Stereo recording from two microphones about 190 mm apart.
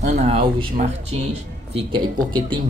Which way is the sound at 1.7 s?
25° right (ahead or behind).